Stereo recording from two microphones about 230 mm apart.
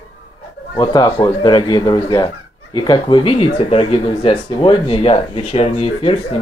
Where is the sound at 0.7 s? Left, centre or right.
Centre.